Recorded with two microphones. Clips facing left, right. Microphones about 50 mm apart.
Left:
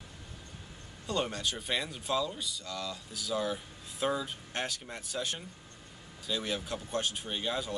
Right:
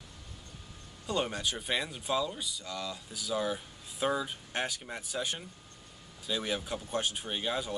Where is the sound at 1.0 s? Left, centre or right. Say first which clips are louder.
Right 1 dB; centre.